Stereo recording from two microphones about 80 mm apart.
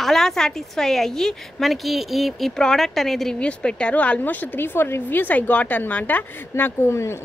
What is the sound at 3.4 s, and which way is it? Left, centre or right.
A woman's voice, centre.